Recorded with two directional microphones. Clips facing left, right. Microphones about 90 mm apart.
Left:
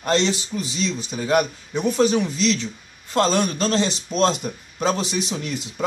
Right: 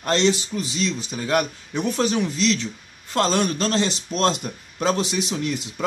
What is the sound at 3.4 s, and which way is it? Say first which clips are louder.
Speech: left 1 dB; 30° left (ahead or behind).